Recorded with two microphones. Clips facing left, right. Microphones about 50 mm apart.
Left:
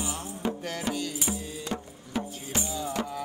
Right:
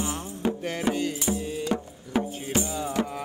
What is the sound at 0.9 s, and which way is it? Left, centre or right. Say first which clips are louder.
Music: right 5 dB; centre.